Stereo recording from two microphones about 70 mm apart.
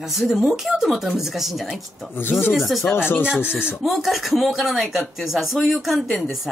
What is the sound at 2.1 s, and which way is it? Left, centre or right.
Speech, left.